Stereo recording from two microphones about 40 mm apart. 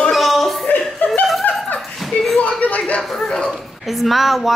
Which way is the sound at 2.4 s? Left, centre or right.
Left.